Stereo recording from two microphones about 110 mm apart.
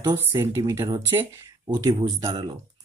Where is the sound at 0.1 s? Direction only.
25° right (ahead or behind).